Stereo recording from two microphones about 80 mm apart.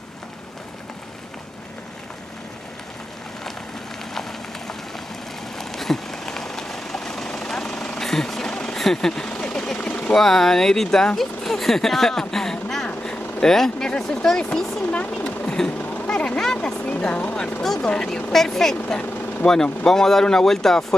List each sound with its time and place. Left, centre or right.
4.1 s rain on surface: centre
5.6 s vehicle: centre
10.1 s speech: centre
17.6 s speech: centre